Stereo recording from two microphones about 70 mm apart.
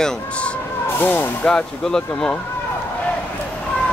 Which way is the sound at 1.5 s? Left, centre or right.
Centre.